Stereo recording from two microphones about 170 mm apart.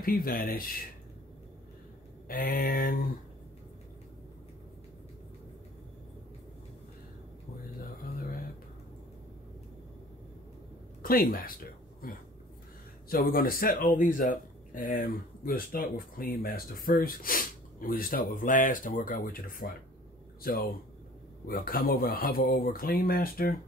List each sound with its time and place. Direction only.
0.0 s speech: 55° left (ahead or behind)
2.2 s speech: 55° left (ahead or behind)
11.0 s speech: 60° left (ahead or behind)
12.0 s a sound: 60° left (ahead or behind)
13.1 s speech: 60° left (ahead or behind)